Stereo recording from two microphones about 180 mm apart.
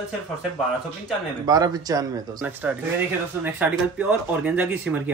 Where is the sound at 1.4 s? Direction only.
20° right (ahead or behind).